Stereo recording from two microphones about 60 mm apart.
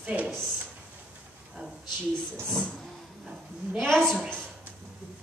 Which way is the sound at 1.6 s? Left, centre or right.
Centre.